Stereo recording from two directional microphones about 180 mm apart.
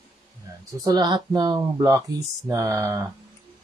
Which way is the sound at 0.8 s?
25° right (ahead or behind).